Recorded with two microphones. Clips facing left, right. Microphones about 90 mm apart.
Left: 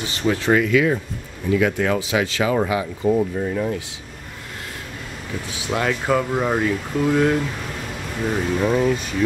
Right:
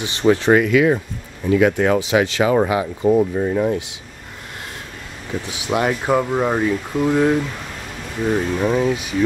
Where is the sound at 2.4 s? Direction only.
40° right (ahead or behind).